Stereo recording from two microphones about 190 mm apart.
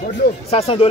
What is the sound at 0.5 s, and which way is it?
Speech, 30° left (ahead or behind).